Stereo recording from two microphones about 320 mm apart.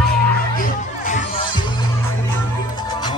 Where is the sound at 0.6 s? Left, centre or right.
Left.